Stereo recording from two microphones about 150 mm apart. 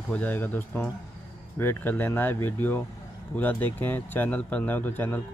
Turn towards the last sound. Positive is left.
turn(degrees=10)  # may be behind; listen again after turning